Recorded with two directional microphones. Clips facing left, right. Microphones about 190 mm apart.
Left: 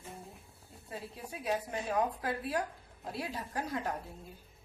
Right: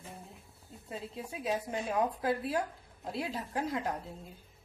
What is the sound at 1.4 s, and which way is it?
A woman's voice, 20° right (ahead or behind).